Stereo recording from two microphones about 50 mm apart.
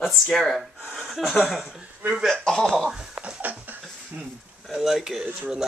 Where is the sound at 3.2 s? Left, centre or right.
Right.